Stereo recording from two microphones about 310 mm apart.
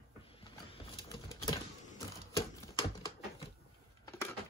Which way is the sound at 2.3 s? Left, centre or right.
Centre.